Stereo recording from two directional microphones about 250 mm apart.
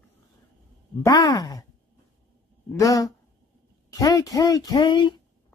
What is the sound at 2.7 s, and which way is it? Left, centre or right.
Speech, centre.